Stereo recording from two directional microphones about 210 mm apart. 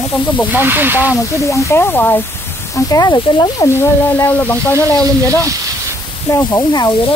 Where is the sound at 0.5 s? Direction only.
10° right (ahead or behind).